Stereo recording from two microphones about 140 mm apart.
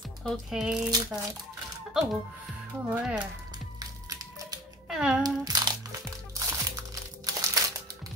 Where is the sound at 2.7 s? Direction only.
15° right (ahead or behind).